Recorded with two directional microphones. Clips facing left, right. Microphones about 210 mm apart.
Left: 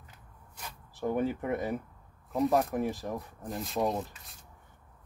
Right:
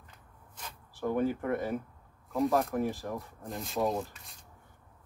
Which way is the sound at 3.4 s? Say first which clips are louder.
Even; centre (ahead or behind).